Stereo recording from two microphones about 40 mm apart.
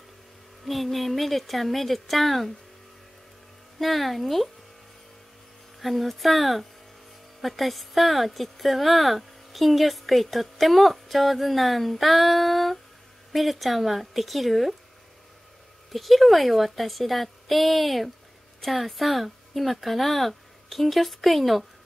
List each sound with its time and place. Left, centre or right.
0.7 s a woman's voice: centre
3.8 s a woman's voice: centre
5.8 s a woman's voice: centre
15.9 s a woman's voice: centre